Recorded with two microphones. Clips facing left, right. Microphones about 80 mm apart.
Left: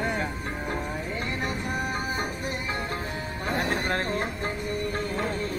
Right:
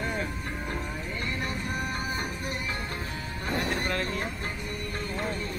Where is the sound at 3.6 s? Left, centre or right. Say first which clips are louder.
Left 2 dB; left.